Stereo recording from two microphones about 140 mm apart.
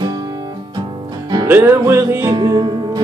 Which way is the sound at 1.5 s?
15° right (ahead or behind).